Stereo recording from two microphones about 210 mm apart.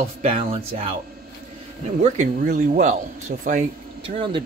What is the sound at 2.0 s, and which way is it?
Speech, 35° right (ahead or behind).